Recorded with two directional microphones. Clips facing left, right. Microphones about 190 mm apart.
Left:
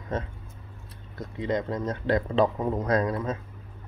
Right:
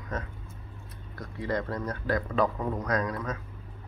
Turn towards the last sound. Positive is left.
turn(degrees=25)  # may be behind; listen again after turning